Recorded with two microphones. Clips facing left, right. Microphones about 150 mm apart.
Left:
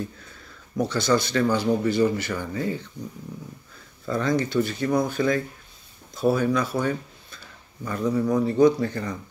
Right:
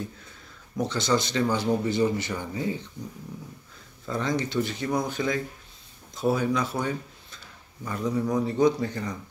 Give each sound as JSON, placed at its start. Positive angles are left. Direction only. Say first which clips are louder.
{"t": 0.8, "sound": "speech", "louder": "left 3 dB", "side_deg": -20}
{"t": 4.1, "sound": "speech", "louder": "left 4 dB", "side_deg": -20}